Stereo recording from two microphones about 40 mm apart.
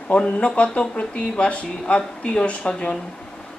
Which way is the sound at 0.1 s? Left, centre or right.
Left.